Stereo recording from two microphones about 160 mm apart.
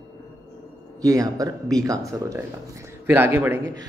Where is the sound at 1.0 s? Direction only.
20° right (ahead or behind).